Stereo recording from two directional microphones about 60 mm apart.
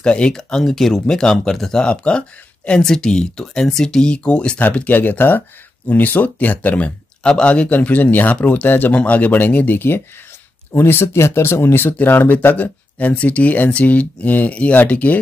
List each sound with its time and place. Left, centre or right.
0.0 s speech: centre
4.6 s speech: left